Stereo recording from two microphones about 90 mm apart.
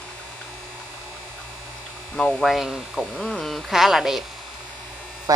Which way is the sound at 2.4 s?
5° right (ahead or behind).